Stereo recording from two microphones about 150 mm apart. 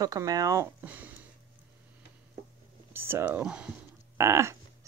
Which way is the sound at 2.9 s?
15° right (ahead or behind).